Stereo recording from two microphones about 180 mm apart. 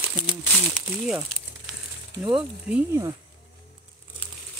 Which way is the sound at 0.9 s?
5° right (ahead or behind).